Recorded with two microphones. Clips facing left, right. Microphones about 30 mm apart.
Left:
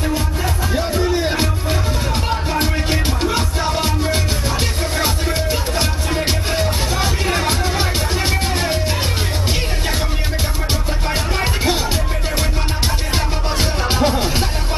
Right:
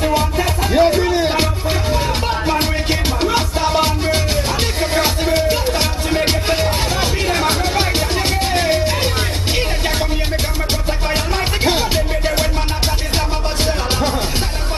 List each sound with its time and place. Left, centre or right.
0.1 s music: right
1.0 s music: centre
8.5 s music: centre
13.9 s music: centre